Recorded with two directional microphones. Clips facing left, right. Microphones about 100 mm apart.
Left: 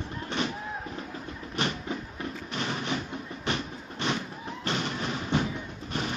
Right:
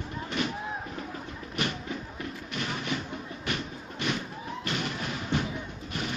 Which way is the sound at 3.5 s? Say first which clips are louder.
Left 2 dB; 25° left (ahead or behind).